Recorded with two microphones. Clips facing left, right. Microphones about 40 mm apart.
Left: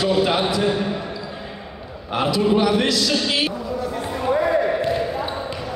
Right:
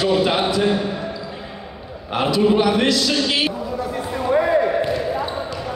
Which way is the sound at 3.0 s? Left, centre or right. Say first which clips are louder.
Right 1 dB; centre.